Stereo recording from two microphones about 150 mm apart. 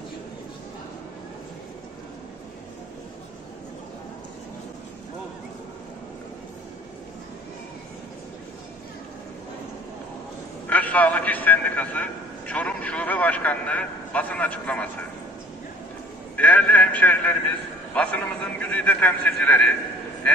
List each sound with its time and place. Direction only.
10.7 s a man's voice: 10° left (ahead or behind)
16.3 s a man's voice: 10° left (ahead or behind)